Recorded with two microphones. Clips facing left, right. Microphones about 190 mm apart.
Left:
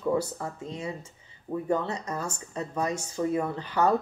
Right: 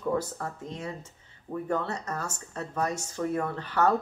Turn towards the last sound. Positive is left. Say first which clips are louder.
# even
turn(degrees=15)  # may be behind; listen again after turning